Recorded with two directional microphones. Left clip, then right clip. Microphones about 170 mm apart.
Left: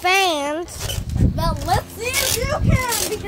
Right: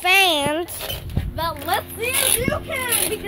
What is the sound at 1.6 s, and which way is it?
Speech, 15° left (ahead or behind).